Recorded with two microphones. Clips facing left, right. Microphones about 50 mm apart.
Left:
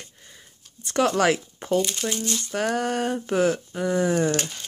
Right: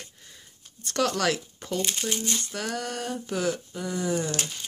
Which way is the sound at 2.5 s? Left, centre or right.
Left.